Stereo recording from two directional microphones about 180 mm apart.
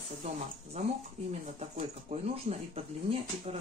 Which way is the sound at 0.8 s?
40° right (ahead or behind).